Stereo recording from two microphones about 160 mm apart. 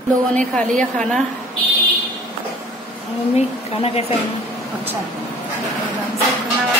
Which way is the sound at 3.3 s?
40° left (ahead or behind).